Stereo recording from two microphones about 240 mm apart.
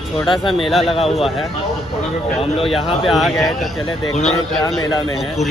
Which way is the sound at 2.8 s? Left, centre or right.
Left.